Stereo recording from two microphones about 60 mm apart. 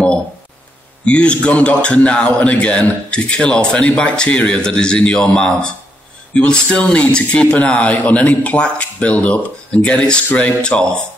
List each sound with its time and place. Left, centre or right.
1.0 s speech: centre